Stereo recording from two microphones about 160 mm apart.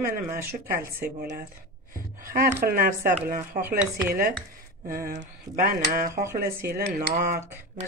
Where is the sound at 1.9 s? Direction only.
65° right (ahead or behind).